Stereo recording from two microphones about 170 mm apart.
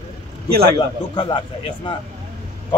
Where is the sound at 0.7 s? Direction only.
25° left (ahead or behind).